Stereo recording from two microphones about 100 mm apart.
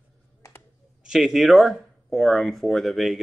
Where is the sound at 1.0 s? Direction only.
5° right (ahead or behind).